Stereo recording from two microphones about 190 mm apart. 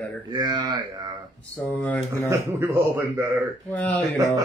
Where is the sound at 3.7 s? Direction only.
10° left (ahead or behind).